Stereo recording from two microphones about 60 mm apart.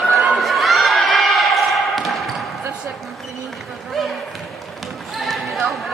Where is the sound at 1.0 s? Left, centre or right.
Centre.